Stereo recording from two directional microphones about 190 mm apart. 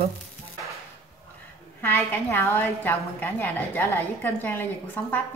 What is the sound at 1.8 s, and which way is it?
A woman's voice, 10° left (ahead or behind).